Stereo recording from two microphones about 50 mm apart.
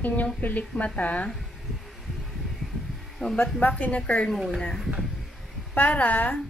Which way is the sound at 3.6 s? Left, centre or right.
Left.